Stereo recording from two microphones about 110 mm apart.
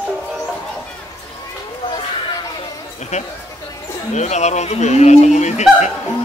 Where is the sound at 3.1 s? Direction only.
90° left.